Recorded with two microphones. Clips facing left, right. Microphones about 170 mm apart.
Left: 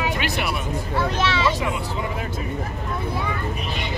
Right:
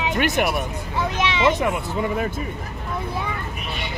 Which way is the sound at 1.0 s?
15° right (ahead or behind).